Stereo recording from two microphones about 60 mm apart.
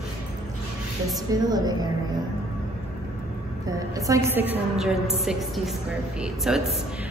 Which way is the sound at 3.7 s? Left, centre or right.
Right.